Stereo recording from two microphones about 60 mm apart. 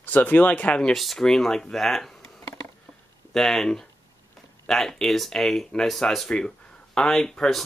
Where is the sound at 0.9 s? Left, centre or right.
Centre.